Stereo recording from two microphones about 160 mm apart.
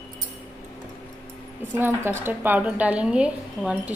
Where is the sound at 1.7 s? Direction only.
15° right (ahead or behind).